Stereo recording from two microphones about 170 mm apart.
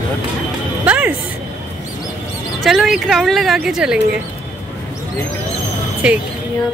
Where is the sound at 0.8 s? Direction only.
10° right (ahead or behind).